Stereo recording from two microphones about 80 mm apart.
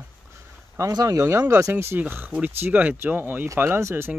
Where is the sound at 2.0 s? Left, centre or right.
Right.